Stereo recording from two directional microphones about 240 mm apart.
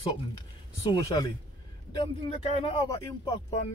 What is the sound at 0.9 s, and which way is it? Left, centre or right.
Speech, centre.